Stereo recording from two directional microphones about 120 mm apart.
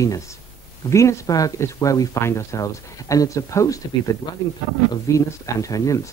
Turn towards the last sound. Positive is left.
turn(degrees=25)  # may be behind; listen again after turning